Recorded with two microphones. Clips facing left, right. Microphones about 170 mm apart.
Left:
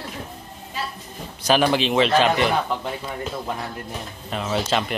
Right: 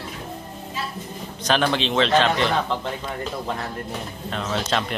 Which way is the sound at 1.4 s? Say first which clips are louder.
Left 3 dB; 10° left (ahead or behind).